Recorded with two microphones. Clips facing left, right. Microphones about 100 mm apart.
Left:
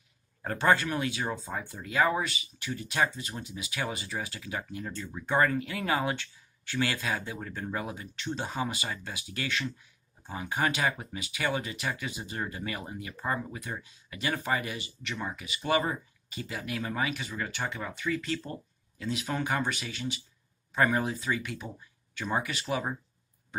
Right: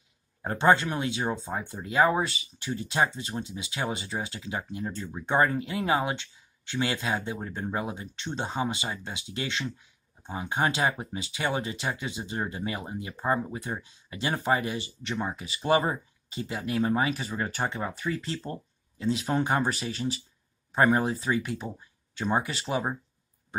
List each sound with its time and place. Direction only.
0.4 s speech: 25° right (ahead or behind)